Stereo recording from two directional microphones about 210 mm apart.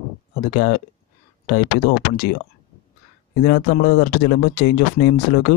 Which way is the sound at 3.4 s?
50° left (ahead or behind).